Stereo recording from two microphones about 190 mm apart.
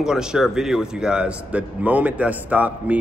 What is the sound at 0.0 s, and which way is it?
A man's voice, 5° right (ahead or behind).